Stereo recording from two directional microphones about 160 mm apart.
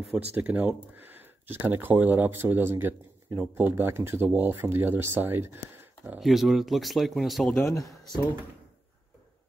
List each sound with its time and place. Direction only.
0.3 s speech: 10° right (ahead or behind)
6.0 s speech: centre (ahead or behind)
7.5 s speech: 20° left (ahead or behind)